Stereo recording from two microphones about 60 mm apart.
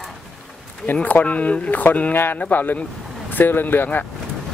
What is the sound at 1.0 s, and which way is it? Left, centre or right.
Speech, left.